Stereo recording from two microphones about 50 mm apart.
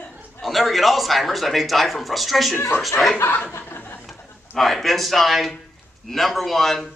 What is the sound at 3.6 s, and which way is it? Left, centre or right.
Chuckle, left.